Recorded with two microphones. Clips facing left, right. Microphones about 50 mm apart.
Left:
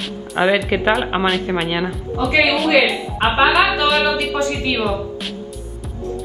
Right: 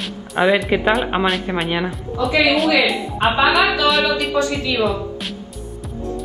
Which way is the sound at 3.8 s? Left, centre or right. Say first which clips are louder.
Even; centre.